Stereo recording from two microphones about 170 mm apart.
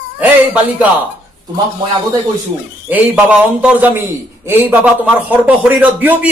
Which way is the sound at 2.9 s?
10° right (ahead or behind).